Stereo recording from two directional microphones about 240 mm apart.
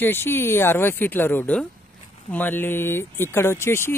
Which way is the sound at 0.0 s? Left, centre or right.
Centre.